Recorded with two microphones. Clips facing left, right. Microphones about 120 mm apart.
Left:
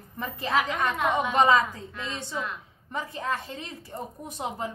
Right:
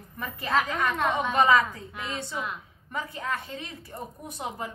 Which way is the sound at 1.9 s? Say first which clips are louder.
Right 1 dB; 15° right (ahead or behind).